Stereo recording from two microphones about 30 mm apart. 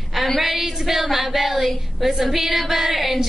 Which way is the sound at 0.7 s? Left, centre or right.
Centre.